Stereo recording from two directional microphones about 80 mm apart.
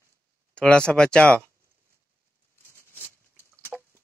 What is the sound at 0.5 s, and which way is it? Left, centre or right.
Speech, centre.